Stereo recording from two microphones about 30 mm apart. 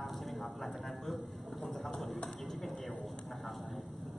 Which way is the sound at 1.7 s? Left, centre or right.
Centre.